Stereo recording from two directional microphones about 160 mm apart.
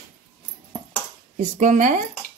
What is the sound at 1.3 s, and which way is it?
Speech, 50° right (ahead or behind).